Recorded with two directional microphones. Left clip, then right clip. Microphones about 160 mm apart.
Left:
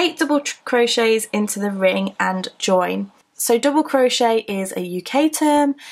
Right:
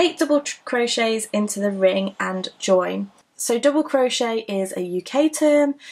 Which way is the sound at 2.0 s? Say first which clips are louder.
Left 4 dB; 35° left (ahead or behind).